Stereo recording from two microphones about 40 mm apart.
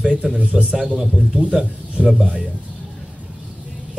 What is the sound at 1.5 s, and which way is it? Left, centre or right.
Speech, right.